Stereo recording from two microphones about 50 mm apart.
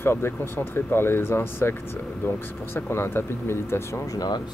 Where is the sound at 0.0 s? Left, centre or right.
Left.